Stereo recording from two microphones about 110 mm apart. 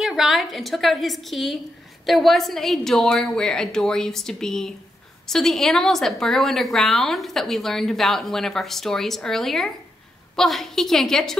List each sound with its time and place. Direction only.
0.0 s a woman's voice: 5° right (ahead or behind)